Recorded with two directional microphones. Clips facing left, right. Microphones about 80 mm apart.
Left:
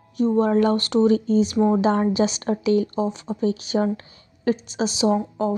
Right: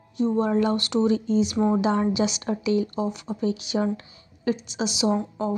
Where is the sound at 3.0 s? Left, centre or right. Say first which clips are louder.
Left 3 dB; left.